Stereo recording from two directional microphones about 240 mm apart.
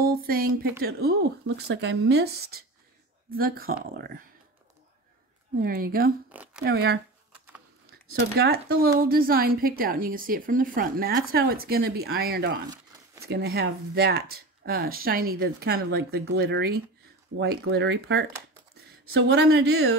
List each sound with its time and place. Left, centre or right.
0.0 s a woman's voice: right
5.6 s a woman's voice: right
6.3 s speech: centre
6.6 s a woman's voice: right
8.1 s a woman's voice: right